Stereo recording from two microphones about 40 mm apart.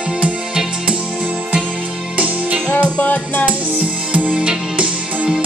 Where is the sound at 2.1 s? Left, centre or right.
Right.